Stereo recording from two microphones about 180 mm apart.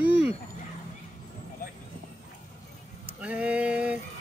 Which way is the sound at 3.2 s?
5° right (ahead or behind).